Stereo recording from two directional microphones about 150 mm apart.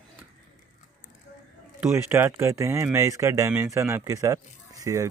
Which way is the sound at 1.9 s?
15° right (ahead or behind).